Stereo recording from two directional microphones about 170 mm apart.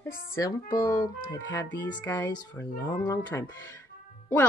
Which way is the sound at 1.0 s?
55° left (ahead or behind).